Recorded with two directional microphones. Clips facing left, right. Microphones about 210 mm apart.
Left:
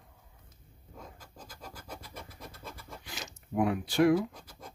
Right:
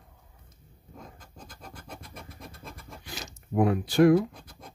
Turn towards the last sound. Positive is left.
turn(degrees=-45)  # may be behind; listen again after turning